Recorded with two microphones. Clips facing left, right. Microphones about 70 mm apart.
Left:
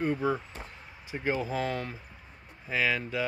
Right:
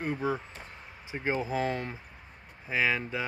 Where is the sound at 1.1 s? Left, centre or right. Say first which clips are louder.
Even; centre.